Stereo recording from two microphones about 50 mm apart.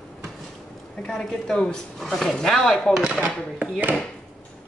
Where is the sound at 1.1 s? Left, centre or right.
Centre.